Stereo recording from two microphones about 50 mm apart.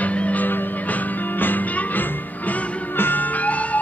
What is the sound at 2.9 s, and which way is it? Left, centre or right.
Music, left.